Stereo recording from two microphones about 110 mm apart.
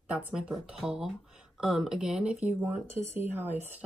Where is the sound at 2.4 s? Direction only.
20° right (ahead or behind).